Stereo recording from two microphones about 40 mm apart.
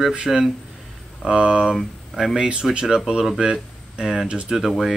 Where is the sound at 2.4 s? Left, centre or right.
Right.